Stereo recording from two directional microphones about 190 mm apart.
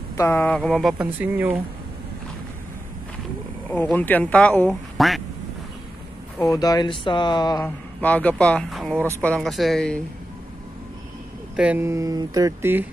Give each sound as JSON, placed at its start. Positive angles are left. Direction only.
{"t": 0.2, "sound": "speech", "side_deg": 10}
{"t": 3.7, "sound": "speech", "side_deg": 10}
{"t": 6.4, "sound": "speech", "side_deg": 20}
{"t": 7.6, "sound": "speech", "side_deg": 10}
{"t": 11.5, "sound": "speech", "side_deg": -5}